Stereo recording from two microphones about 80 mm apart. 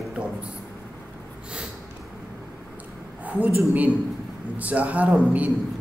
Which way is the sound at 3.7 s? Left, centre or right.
Centre.